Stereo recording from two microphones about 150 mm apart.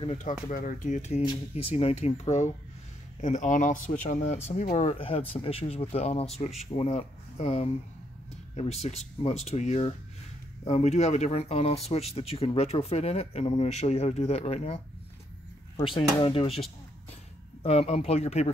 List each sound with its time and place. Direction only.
0.2 s speech: 60° left (ahead or behind)
1.2 s speech: 35° left (ahead or behind)
17.6 s speech: 45° left (ahead or behind)